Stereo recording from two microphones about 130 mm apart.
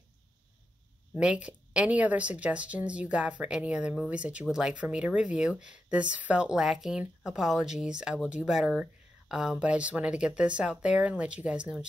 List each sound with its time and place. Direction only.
1.1 s speech: 10° right (ahead or behind)